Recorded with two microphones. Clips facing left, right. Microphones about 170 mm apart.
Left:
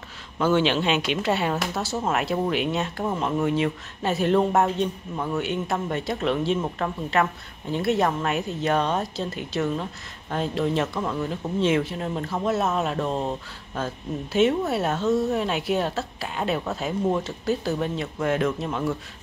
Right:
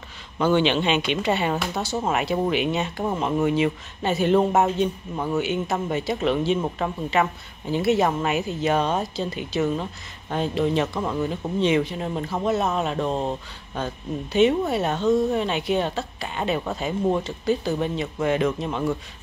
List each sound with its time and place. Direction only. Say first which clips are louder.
0.4 s speech: right 1 dB; centre (ahead or behind)